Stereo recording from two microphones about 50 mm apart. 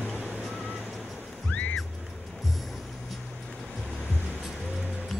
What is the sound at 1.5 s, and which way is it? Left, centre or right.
Boat, left.